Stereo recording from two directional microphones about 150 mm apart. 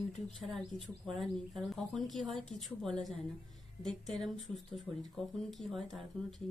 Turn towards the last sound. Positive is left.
turn(degrees=0)  # may be behind; listen again after turning